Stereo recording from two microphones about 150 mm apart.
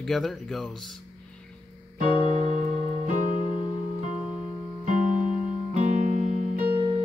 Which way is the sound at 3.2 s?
35° left (ahead or behind).